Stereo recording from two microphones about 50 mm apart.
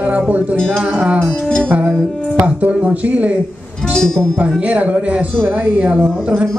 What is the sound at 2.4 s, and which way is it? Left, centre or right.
Speech, right.